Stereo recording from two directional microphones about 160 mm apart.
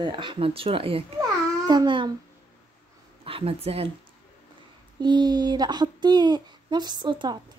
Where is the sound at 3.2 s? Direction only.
35° right (ahead or behind).